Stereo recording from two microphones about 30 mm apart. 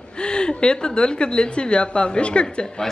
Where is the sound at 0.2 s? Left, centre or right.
Left.